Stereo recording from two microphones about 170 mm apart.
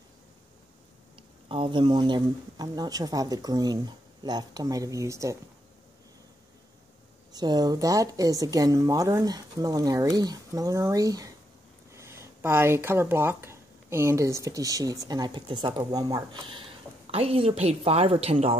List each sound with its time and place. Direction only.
1.1 s speech: 30° right (ahead or behind)
7.3 s speech: 25° right (ahead or behind)